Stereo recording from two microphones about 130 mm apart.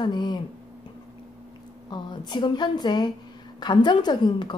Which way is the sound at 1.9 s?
35° left (ahead or behind).